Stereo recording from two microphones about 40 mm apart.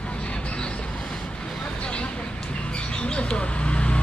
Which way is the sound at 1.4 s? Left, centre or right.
Left.